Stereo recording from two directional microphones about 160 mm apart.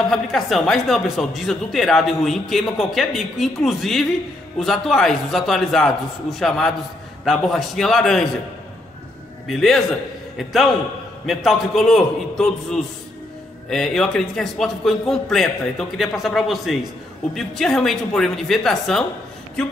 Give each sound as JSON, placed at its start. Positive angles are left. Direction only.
{"t": 0.1, "sound": "speech", "side_deg": 0}
{"t": 9.5, "sound": "speech", "side_deg": 0}